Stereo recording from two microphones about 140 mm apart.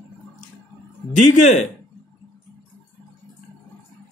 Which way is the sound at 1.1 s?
60° left (ahead or behind).